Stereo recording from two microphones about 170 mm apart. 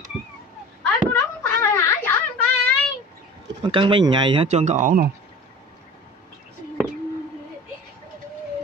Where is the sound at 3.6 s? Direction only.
30° right (ahead or behind).